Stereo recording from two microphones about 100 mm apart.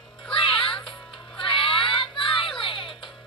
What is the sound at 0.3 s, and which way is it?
Music, 65° left (ahead or behind).